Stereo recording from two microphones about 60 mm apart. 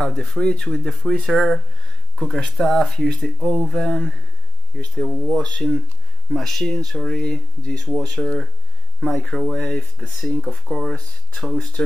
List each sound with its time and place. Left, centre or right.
0.0 s speech: centre
5.3 s speech: centre